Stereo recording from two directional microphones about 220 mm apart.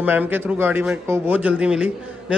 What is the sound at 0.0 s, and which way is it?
A man's voice, 10° right (ahead or behind).